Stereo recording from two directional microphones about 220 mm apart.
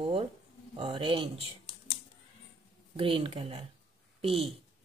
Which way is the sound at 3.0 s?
25° right (ahead or behind).